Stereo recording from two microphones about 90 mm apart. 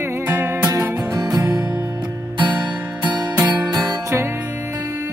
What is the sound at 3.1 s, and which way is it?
Music, 45° right (ahead or behind).